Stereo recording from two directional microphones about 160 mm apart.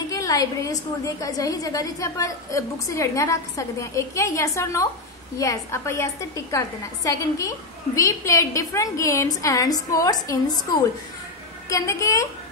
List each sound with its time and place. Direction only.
0.1 s a woman's voice: 20° left (ahead or behind)